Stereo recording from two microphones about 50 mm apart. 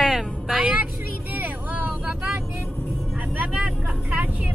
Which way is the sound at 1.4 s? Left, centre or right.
Right.